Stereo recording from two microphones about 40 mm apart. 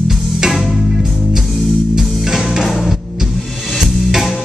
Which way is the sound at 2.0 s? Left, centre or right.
Centre.